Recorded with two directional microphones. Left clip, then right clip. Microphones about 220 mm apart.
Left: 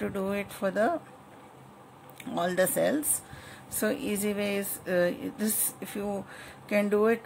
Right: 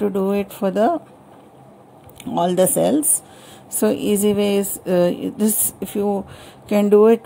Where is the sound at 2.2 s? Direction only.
20° right (ahead or behind).